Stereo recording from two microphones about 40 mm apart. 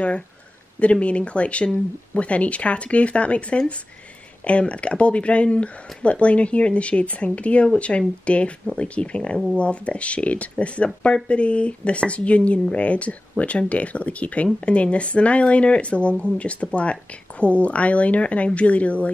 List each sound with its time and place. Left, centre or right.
0.7 s speech: left